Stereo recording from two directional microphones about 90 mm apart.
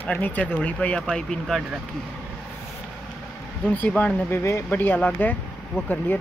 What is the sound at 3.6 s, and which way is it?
Speech, 20° left (ahead or behind).